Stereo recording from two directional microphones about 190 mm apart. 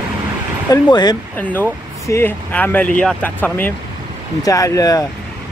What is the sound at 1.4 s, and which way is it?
Speech, 10° left (ahead or behind).